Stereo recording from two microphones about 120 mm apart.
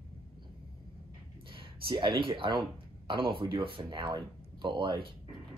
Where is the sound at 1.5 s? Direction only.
45° right (ahead or behind).